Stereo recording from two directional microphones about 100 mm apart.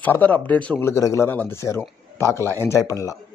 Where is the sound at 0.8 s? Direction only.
30° left (ahead or behind).